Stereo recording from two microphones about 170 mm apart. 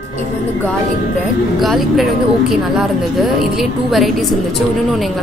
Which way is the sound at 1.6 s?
Centre (ahead or behind).